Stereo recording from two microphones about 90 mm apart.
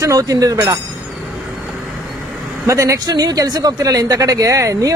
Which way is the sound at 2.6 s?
35° right (ahead or behind).